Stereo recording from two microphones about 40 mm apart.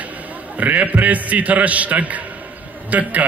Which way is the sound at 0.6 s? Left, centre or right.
Right.